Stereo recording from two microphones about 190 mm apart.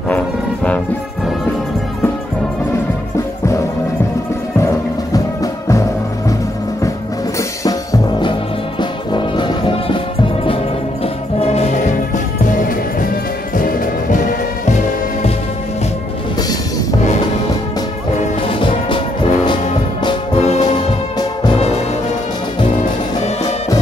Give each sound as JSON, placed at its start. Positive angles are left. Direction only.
{"t": 4.6, "sound": "music", "side_deg": 15}
{"t": 7.3, "sound": "music", "side_deg": 20}
{"t": 13.6, "sound": "music", "side_deg": 45}
{"t": 18.2, "sound": "music", "side_deg": 25}